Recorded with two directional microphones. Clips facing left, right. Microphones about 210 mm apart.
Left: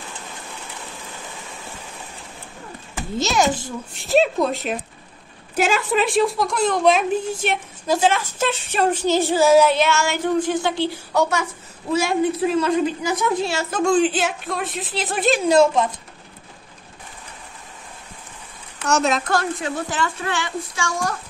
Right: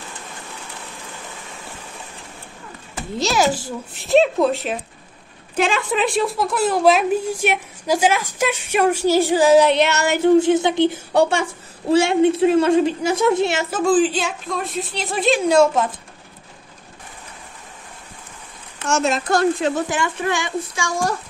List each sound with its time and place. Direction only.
3.2 s a woman's voice: 5° right (ahead or behind); by 11.0 s 20° right (ahead or behind)
11.1 s a woman's voice: 30° right (ahead or behind)
13.7 s a woman's voice: 5° right (ahead or behind)
18.9 s a woman's voice: centre (ahead or behind)
19.9 s a child's voice: 15° right (ahead or behind)